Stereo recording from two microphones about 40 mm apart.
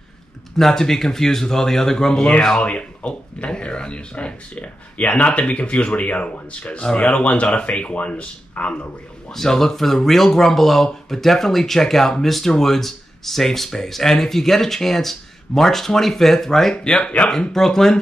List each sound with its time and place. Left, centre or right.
0.6 s speech: centre
2.6 s speech: left
6.8 s speech: left
9.3 s speech: centre